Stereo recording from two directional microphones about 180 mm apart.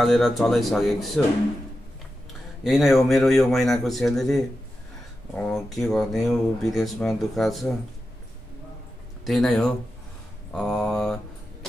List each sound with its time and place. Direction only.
0.0 s speech: centre (ahead or behind)
2.6 s speech: centre (ahead or behind)
9.2 s speech: centre (ahead or behind)